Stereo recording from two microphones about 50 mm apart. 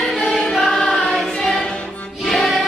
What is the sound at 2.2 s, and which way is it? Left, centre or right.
Music, centre.